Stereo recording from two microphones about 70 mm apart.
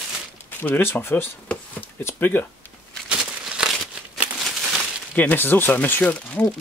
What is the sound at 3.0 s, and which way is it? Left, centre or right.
Crumpling, centre.